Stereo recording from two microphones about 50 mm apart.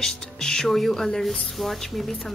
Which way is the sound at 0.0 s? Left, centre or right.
Centre.